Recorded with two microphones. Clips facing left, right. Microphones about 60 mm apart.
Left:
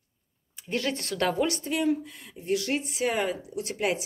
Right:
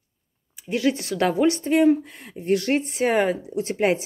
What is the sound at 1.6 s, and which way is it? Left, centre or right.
A woman's voice, right.